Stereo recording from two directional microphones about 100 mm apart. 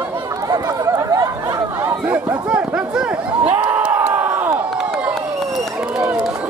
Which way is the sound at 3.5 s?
15° right (ahead or behind).